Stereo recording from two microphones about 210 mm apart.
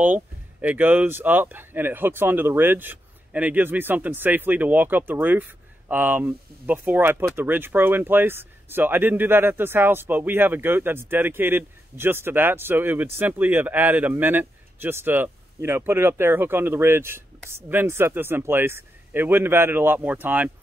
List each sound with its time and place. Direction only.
0.0 s speech: 5° right (ahead or behind)